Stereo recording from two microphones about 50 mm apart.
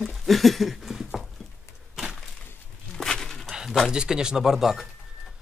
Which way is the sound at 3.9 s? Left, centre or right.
Centre.